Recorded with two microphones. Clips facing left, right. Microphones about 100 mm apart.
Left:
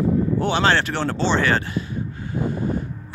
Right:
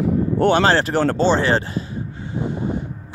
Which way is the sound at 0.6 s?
35° right (ahead or behind).